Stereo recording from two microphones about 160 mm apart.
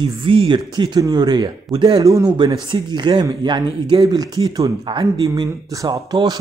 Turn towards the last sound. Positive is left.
turn(degrees=-25)  # may be behind; listen again after turning